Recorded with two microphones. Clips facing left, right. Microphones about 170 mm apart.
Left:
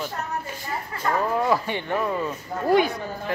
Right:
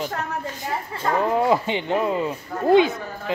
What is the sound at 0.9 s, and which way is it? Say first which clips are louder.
Speech: right 2 dB; 25° right (ahead or behind).